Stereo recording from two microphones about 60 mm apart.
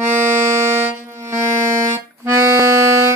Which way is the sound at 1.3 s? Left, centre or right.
Right.